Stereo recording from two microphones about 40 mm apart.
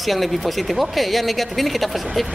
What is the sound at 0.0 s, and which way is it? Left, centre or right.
A woman's voice, centre.